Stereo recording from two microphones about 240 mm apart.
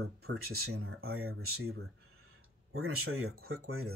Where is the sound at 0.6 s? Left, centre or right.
Right.